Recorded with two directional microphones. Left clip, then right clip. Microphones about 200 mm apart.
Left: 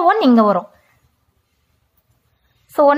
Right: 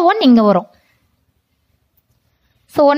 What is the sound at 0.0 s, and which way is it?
Speech, 30° right (ahead or behind).